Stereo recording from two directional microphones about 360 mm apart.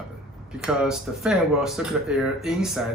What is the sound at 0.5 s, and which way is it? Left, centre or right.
A man's voice, centre.